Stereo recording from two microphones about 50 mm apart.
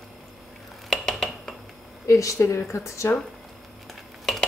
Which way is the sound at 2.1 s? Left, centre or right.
Left.